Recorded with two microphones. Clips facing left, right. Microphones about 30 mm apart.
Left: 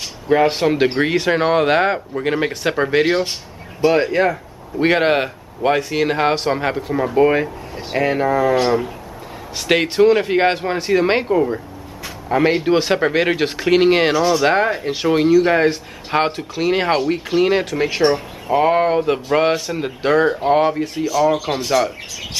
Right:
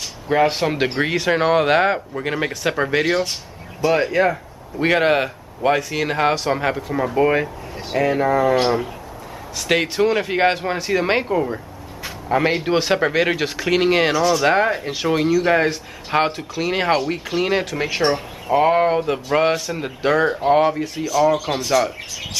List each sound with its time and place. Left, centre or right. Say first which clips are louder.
0.3 s a man's voice: left 3 dB; centre
7.9 s speech: left 1 dB; left
8.2 s a man's voice: left 1 dB; centre